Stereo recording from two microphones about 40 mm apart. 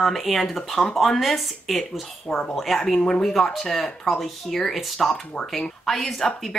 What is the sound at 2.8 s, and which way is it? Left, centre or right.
Speech, centre.